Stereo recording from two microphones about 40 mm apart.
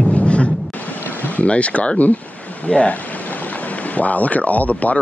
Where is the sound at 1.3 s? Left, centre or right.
Left.